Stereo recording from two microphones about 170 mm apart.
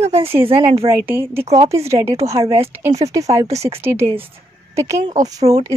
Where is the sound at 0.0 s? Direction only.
40° right (ahead or behind).